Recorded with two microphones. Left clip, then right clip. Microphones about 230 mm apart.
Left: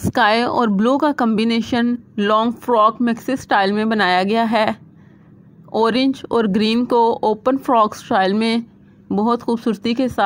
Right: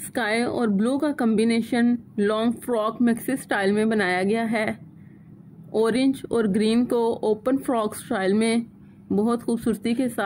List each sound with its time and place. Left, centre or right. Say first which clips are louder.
0.1 s a woman's voice: left 9 dB; left